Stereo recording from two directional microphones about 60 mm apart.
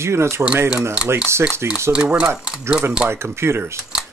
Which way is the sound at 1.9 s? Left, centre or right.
Centre.